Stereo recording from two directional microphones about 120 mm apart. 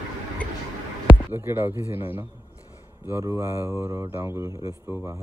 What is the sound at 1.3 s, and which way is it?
A man's voice, 20° right (ahead or behind).